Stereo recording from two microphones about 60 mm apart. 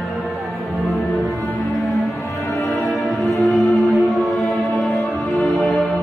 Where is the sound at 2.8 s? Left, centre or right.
Centre.